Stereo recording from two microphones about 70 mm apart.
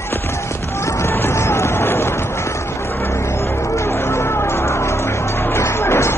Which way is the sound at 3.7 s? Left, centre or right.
Left.